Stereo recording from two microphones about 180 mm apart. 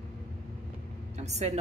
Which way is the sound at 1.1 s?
40° right (ahead or behind).